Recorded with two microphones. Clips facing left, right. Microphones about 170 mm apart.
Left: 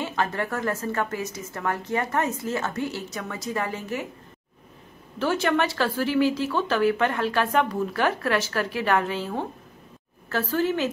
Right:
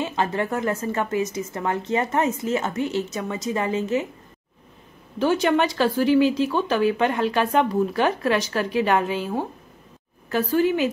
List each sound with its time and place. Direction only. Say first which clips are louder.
0.0 s a woman's voice: right 3 dB; 20° right (ahead or behind)
5.2 s speech: right 3 dB; 15° right (ahead or behind)